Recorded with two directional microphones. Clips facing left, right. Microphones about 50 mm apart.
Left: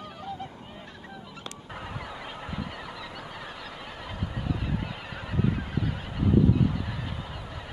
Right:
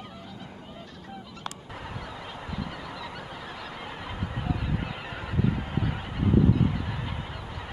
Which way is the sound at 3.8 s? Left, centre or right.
Centre.